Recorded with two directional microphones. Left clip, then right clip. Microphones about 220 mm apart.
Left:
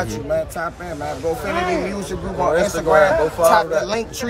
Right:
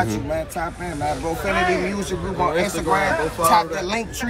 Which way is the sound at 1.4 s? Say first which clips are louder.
Right 3 dB; 40° left (ahead or behind).